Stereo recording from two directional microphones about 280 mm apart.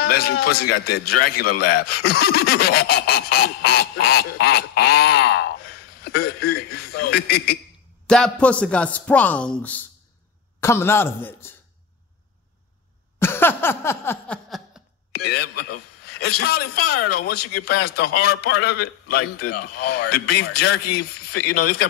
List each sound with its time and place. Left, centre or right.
0.0 s a man's voice: left
8.1 s a man's voice: centre
13.2 s a sound: centre
15.1 s a man's voice: left